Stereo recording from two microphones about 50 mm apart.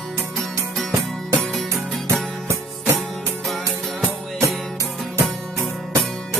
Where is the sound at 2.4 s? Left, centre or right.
Right.